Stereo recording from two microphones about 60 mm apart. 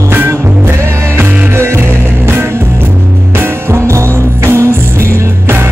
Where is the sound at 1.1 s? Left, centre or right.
Right.